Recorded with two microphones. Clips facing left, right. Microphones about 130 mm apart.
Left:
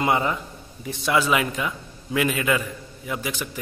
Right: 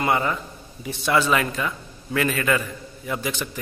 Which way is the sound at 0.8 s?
5° left (ahead or behind).